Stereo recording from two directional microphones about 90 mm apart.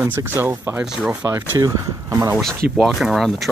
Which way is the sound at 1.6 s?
40° right (ahead or behind).